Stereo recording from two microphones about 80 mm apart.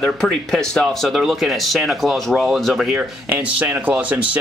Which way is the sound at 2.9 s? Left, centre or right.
Right.